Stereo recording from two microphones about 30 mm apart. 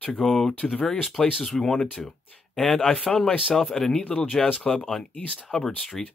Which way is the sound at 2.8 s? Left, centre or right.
Left.